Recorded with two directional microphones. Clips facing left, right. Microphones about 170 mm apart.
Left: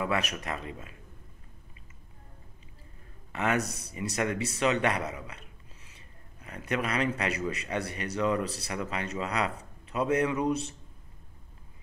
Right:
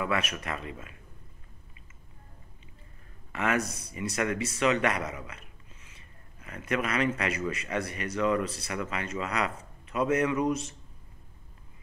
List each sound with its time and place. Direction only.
0.0 s speech: 35° left (ahead or behind)
3.3 s a man's voice: 35° left (ahead or behind)